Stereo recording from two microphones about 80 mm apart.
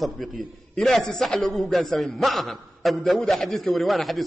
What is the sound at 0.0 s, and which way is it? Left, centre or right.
A man's voice, centre.